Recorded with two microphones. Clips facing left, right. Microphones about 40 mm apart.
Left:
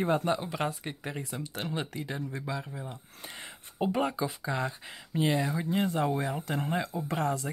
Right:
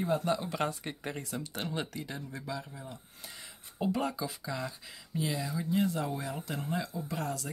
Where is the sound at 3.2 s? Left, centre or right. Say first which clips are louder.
Left 6 dB; left.